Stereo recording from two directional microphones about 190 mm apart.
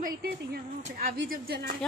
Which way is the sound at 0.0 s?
50° right (ahead or behind).